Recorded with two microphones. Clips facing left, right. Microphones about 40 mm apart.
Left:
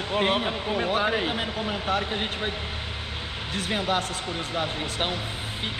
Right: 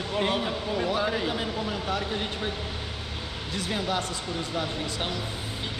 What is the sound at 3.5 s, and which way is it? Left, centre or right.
Speech, left.